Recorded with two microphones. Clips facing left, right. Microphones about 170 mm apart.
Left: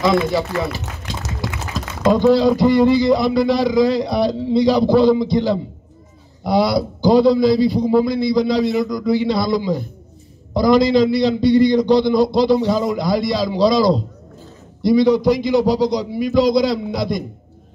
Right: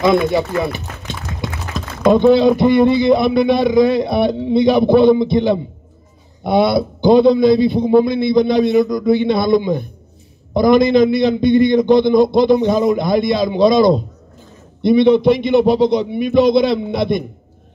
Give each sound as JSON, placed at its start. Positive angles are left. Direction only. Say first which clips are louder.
{"t": 1.4, "sound": "speech", "louder": "right 1 dB", "side_deg": -25}
{"t": 10.5, "sound": "speech", "louder": "right 2 dB", "side_deg": -20}
{"t": 11.2, "sound": "a sound", "louder": "right 1 dB", "side_deg": -55}
{"t": 11.6, "sound": "speech", "louder": "right 2 dB", "side_deg": -20}